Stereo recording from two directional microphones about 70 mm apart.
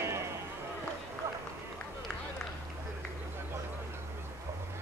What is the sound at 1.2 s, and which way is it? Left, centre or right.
Run, right.